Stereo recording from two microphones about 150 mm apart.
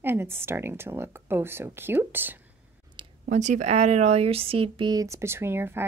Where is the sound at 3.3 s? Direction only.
50° right (ahead or behind).